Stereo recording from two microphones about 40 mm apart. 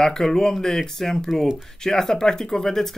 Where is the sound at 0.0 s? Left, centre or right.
Centre.